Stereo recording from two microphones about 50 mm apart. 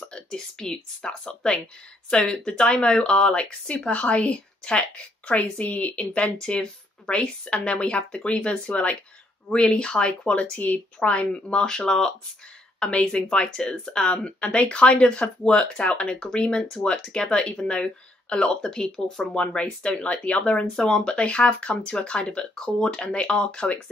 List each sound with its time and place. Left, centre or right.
0.0 s speech: centre
19.4 s speech: left